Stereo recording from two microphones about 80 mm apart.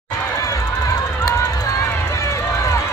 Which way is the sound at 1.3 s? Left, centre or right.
Left.